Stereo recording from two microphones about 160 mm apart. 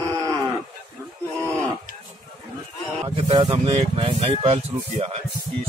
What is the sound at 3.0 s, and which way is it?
Speech, 35° right (ahead or behind).